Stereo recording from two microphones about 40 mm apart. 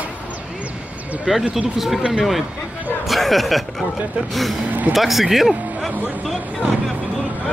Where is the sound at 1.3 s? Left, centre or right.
Centre.